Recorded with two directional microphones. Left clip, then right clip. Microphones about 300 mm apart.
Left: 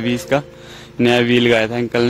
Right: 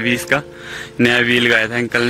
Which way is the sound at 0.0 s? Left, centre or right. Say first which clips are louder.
Right 2 dB; centre.